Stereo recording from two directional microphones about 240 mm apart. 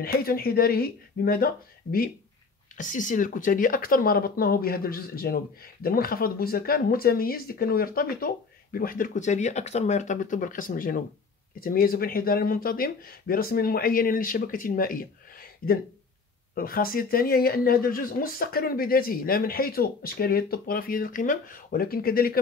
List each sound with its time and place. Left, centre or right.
0.0 s speech: left